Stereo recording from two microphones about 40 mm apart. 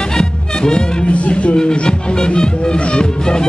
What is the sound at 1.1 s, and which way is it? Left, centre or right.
Music, left.